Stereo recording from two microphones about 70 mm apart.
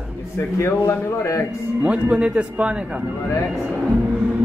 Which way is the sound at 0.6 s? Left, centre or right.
Left.